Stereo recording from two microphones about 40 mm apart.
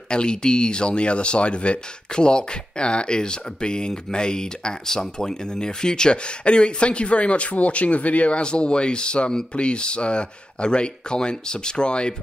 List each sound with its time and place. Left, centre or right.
0.1 s speech: left